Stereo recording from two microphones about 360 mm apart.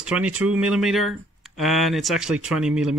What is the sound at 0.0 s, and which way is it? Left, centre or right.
Speech, centre.